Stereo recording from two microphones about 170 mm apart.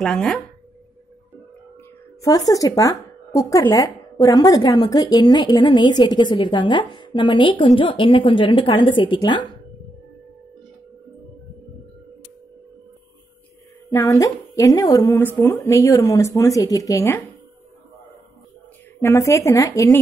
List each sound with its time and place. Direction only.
0.0 s speech: 5° left (ahead or behind)
2.2 s speech: 20° left (ahead or behind)
13.8 s speech: 20° left (ahead or behind)
18.9 s speech: 15° left (ahead or behind)